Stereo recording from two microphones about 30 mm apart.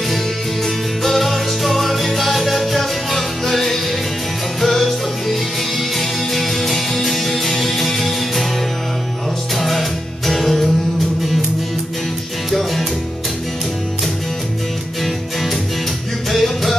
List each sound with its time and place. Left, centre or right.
0.7 s music: centre
9.6 s music: centre
12.4 s music: centre
16.3 s music: centre